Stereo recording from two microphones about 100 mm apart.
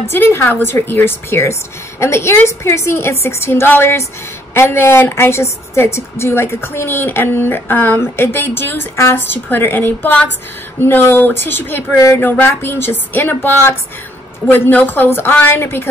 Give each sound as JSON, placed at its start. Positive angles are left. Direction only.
{"t": 0.1, "sound": "a woman's voice", "side_deg": 25}